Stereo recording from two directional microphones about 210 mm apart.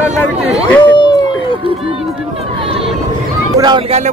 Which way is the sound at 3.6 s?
25° right (ahead or behind).